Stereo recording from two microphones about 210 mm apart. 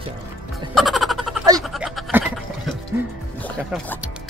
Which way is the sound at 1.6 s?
Centre (ahead or behind).